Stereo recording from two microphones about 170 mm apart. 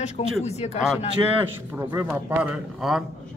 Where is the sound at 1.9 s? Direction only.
20° right (ahead or behind).